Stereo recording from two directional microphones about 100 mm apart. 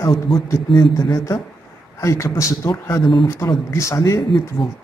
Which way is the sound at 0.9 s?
35° left (ahead or behind).